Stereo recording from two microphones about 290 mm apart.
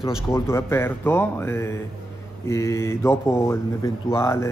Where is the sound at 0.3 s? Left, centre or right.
Centre.